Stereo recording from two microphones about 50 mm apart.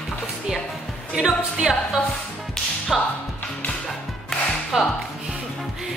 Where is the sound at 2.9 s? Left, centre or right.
Centre.